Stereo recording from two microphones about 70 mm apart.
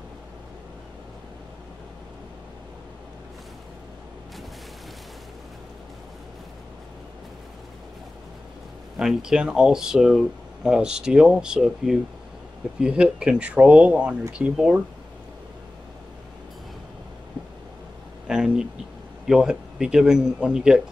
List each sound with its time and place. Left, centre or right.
8.9 s speech: centre
12.8 s speech: centre
18.2 s a sound: centre
19.2 s speech: centre